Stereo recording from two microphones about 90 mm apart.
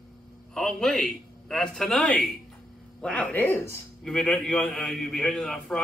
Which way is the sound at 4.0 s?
10° left (ahead or behind).